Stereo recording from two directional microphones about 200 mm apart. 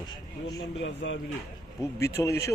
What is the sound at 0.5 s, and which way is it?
Speech, 65° left (ahead or behind).